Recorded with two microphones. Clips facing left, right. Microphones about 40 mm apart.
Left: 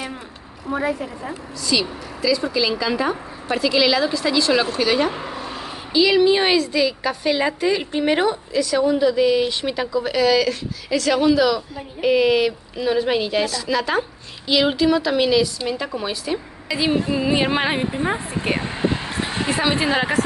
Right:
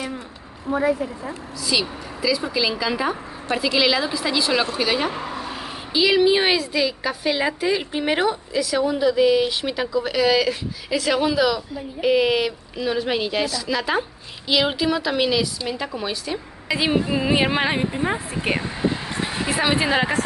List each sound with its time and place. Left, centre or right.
1.6 s speech: centre
16.6 s female singing: right
17.5 s speech: centre
18.6 s speech: left
19.0 s a sound: left
19.8 s speech: centre